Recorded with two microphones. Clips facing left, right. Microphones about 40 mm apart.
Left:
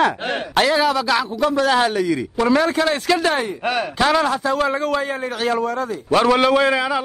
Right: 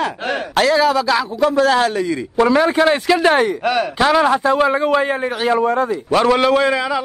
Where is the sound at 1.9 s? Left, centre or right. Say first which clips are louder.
Right 2 dB; centre.